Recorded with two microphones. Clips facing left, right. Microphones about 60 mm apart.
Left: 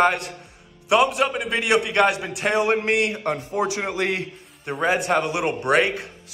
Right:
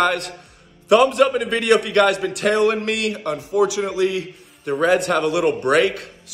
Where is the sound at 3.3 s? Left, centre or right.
Left.